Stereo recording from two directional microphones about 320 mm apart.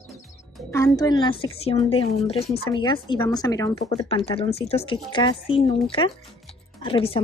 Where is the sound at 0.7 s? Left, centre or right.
Centre.